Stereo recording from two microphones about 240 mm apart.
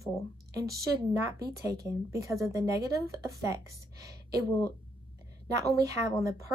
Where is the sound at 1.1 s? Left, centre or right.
Centre.